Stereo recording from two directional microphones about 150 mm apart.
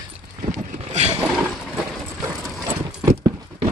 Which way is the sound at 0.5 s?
50° right (ahead or behind).